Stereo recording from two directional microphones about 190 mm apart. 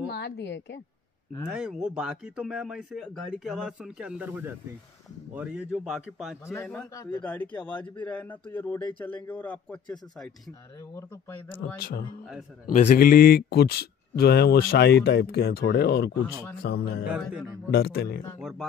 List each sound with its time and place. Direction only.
0.1 s a woman's voice: 60° left (ahead or behind)
1.5 s speech: 5° right (ahead or behind)
6.4 s speech: 10° left (ahead or behind)
11.8 s a man's voice: 50° left (ahead or behind)
17.0 s a man's voice: 5° right (ahead or behind)
17.6 s speech: 55° left (ahead or behind)
18.4 s speech: centre (ahead or behind)